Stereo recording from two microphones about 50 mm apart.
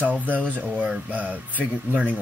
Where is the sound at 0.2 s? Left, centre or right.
Left.